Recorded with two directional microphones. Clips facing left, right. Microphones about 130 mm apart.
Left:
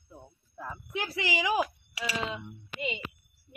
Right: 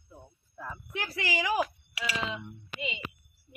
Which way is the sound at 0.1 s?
15° left (ahead or behind).